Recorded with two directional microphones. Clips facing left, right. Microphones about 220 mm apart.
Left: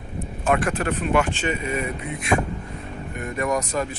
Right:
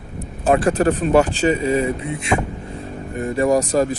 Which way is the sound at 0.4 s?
35° right (ahead or behind).